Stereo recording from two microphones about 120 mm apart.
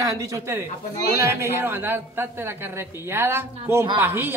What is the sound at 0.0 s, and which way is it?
A woman's voice, 25° right (ahead or behind).